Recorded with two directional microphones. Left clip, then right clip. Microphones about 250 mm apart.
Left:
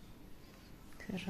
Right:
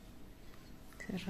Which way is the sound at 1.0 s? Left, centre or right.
Centre.